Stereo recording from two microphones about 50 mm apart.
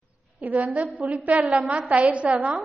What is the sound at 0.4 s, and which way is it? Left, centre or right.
A woman's voice, right.